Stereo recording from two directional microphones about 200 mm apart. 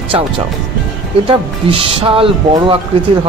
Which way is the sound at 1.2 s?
25° right (ahead or behind).